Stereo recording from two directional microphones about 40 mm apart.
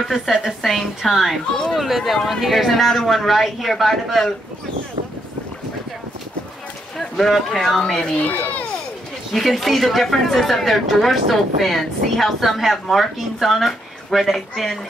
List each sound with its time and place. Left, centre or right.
0.1 s a woman's voice: centre
0.5 s speech: centre
7.0 s speech: centre
8.2 s speech: left
9.3 s speech: centre